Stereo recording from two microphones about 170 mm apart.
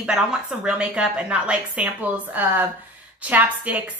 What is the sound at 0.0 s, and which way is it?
A woman's voice, 5° right (ahead or behind).